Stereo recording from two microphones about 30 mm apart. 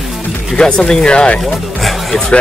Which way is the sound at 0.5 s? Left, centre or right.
Left.